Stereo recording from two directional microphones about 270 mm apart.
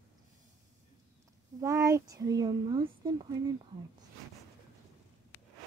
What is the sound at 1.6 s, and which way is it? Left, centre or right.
Speech, centre.